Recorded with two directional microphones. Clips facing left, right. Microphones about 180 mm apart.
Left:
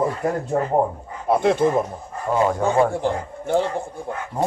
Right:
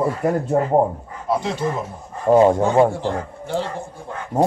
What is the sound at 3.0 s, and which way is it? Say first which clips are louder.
Speech: left 1 dB; 55° left (ahead or behind).